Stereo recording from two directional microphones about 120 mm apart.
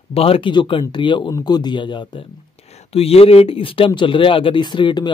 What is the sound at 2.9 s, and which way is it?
Speech, 55° left (ahead or behind).